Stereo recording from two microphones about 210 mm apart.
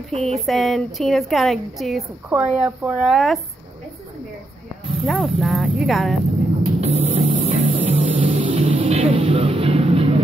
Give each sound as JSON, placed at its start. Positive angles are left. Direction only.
{"t": 0.1, "sound": "a woman's voice", "side_deg": 0}
{"t": 5.0, "sound": "a woman's voice", "side_deg": 0}
{"t": 6.8, "sound": "music", "side_deg": -30}